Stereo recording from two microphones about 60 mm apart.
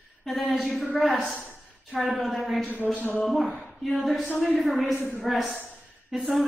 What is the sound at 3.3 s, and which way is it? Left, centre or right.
Speech, centre.